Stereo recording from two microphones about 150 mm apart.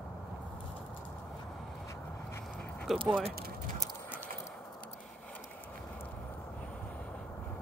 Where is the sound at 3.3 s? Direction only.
90° right.